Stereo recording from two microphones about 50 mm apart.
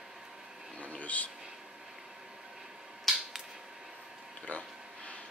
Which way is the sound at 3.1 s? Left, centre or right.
Centre.